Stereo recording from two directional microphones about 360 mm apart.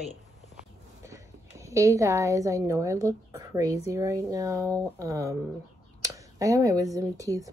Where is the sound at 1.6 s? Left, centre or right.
Centre.